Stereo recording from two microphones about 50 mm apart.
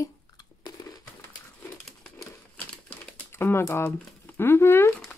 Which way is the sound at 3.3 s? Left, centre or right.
Left.